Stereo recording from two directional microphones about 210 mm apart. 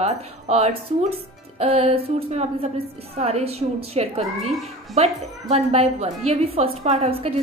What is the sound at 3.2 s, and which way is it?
A woman's voice, 30° right (ahead or behind).